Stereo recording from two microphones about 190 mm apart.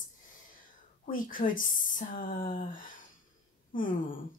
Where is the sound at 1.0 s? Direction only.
45° left (ahead or behind).